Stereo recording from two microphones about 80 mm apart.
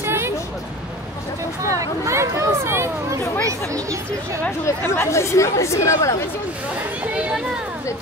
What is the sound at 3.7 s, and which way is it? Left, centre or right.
Speech, right.